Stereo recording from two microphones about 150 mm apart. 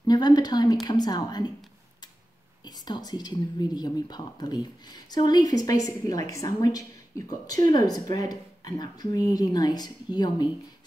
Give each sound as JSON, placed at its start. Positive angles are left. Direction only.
{"t": 0.0, "sound": "speech", "side_deg": 25}
{"t": 2.6, "sound": "speech", "side_deg": 30}